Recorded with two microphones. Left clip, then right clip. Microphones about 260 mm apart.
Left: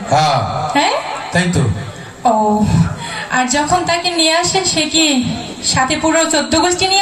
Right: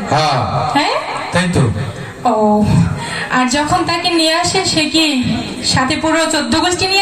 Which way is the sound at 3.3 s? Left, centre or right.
Left.